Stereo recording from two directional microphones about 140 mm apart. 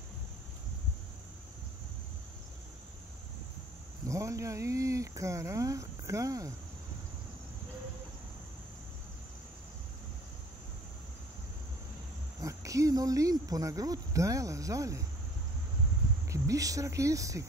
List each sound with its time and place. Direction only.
4.0 s speech: 20° right (ahead or behind)
12.4 s speech: 25° right (ahead or behind)
16.3 s speech: 25° right (ahead or behind)